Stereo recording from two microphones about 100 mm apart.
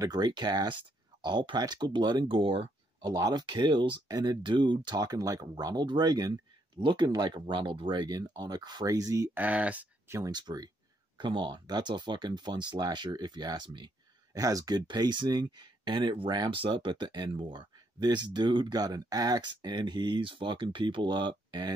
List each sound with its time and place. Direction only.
0.0 s speech: 45° right (ahead or behind); by 2.7 s 65° right (ahead or behind)
3.0 s speech: 40° right (ahead or behind)
9.3 s speech: 15° right (ahead or behind)
10.0 s speech: 30° right (ahead or behind)
10.3 s speech: 45° right (ahead or behind)
14.4 s speech: 35° right (ahead or behind)
14.9 s speech: 50° right (ahead or behind)